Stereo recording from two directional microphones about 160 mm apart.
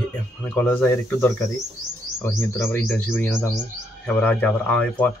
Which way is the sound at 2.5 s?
15° left (ahead or behind).